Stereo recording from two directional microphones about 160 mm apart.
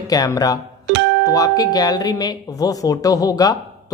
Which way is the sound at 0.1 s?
25° left (ahead or behind).